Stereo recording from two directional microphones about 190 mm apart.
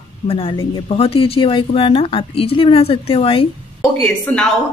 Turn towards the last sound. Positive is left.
turn(degrees=5)  # may be behind; listen again after turning